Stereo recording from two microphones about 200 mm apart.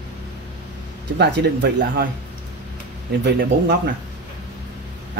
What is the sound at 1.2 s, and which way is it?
Speech, 60° right (ahead or behind).